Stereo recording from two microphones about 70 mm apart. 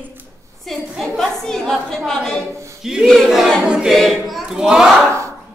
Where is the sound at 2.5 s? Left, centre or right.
Right.